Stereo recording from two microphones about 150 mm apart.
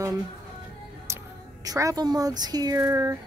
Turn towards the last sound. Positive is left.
turn(degrees=-20)  # may be behind; listen again after turning